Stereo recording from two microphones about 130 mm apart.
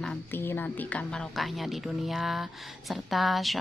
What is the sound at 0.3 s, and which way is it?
Speech, 15° left (ahead or behind).